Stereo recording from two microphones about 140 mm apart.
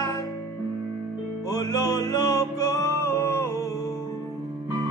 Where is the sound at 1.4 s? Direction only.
25° left (ahead or behind).